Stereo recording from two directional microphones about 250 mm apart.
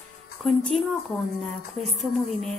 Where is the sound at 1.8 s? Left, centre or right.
Centre.